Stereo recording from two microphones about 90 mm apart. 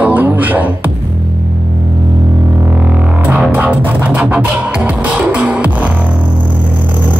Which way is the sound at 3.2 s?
15° right (ahead or behind).